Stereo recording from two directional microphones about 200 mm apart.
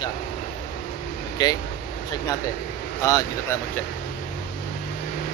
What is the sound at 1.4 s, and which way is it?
Speech, 20° left (ahead or behind).